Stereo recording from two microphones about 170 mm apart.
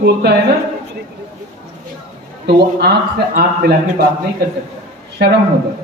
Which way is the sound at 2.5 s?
65° right (ahead or behind).